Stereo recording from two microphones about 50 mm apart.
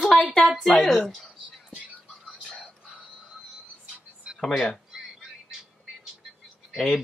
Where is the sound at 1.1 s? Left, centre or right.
Centre.